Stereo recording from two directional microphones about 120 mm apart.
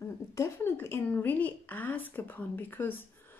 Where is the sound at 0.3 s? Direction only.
20° left (ahead or behind).